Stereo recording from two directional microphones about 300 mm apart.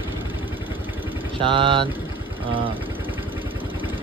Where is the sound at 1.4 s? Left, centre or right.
Centre.